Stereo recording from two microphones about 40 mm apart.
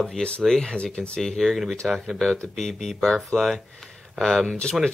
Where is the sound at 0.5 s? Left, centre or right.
Left.